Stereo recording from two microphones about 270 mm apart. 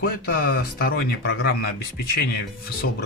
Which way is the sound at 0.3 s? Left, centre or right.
Left.